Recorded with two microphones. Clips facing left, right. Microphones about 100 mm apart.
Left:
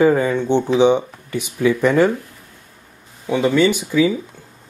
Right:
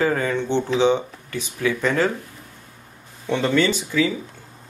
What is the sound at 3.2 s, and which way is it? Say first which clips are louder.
Speech: left 4 dB; 10° left (ahead or behind).